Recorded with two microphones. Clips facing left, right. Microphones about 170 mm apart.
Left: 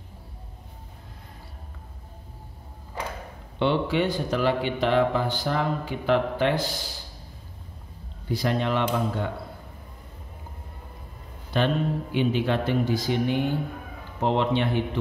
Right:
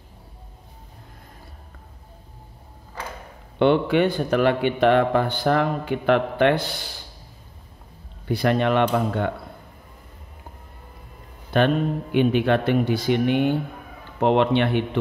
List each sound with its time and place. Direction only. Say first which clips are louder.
3.5 s a man's voice: right 5 dB; 55° right (ahead or behind)
8.3 s a man's voice: right 5 dB; 65° right (ahead or behind)
11.5 s a man's voice: right 4 dB; 60° right (ahead or behind)